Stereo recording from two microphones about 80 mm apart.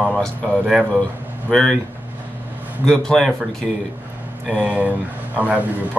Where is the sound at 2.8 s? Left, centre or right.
Centre.